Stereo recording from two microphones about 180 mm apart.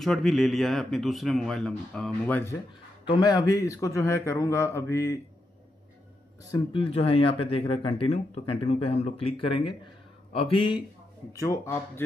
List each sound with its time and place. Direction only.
0.0 s speech: centre (ahead or behind)
3.1 s a man's voice: 25° left (ahead or behind)
6.5 s speech: 30° left (ahead or behind)
11.3 s a man's voice: 15° left (ahead or behind)